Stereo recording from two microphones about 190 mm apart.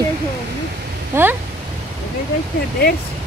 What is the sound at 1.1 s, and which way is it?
Speech, 15° right (ahead or behind).